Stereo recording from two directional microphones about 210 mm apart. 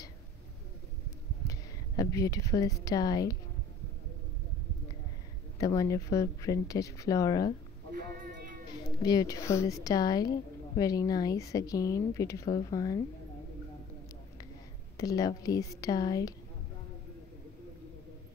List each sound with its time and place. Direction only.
1.5 s speech: 15° left (ahead or behind)
5.6 s speech: 15° left (ahead or behind)
9.0 s a woman's voice: 20° left (ahead or behind)
15.0 s speech: 15° left (ahead or behind)